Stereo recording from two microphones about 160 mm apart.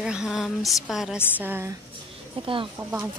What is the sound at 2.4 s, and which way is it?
Speech, 35° right (ahead or behind).